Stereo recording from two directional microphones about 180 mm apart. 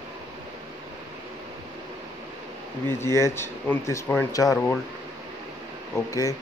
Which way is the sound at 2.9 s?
15° left (ahead or behind).